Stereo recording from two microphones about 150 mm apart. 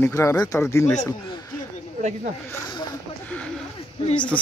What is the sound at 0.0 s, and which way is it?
Speech, 20° left (ahead or behind).